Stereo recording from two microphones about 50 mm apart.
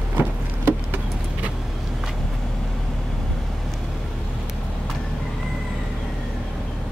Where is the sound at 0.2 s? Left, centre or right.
Right.